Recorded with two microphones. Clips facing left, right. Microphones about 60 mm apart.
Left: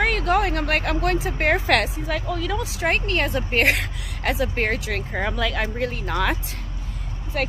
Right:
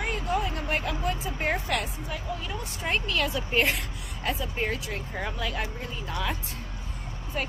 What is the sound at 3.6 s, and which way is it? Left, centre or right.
A woman's voice, left.